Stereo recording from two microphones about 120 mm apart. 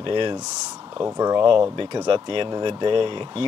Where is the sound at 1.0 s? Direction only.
30° right (ahead or behind).